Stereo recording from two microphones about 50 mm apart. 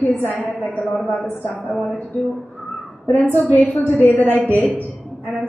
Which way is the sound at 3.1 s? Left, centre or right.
Left.